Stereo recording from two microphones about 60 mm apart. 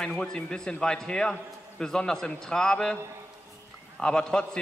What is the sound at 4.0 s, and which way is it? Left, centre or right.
Speech, centre.